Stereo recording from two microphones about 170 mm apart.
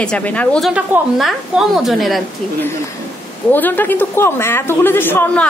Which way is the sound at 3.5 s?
10° left (ahead or behind).